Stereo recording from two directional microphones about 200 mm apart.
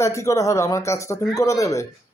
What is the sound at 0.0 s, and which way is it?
Speech, 15° left (ahead or behind).